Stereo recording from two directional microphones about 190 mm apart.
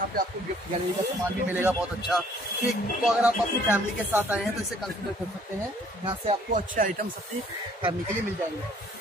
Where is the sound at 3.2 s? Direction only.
10° right (ahead or behind).